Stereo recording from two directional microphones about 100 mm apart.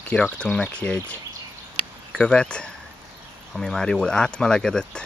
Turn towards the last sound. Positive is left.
turn(degrees=5)  # may be behind; listen again after turning